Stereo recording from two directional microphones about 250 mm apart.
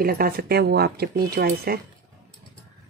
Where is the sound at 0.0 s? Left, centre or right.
Right.